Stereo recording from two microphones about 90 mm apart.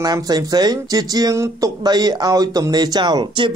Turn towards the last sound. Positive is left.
turn(degrees=-60)  # may be behind; listen again after turning